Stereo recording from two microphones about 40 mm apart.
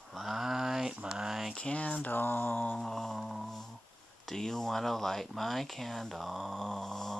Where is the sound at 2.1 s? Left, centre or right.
Left.